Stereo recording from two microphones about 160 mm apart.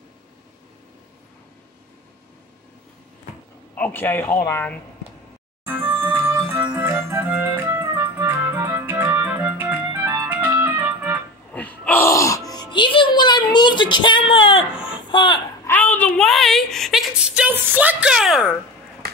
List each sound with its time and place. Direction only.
3.7 s a man's voice: 10° left (ahead or behind)
5.7 s music: 15° right (ahead or behind)
6.5 s organ: 10° right (ahead or behind)
7.8 s music: 25° right (ahead or behind)
11.5 s music: 10° left (ahead or behind); by 14.7 s 30° left (ahead or behind)
15.0 s speech: 30° left (ahead or behind)
15.6 s a sound: 10° left (ahead or behind)